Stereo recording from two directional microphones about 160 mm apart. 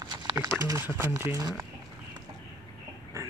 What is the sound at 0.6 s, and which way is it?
Speech, 20° right (ahead or behind).